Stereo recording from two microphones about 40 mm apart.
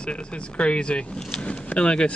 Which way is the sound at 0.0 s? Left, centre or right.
Left.